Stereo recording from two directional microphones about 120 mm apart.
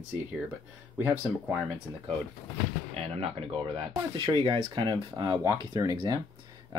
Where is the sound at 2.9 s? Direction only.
55° right (ahead or behind).